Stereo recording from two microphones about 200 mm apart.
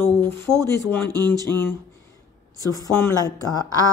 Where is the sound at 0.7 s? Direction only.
15° left (ahead or behind).